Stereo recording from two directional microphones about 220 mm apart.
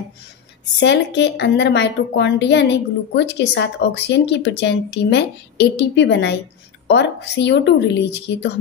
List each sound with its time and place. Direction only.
0.7 s a woman's voice: 50° left (ahead or behind)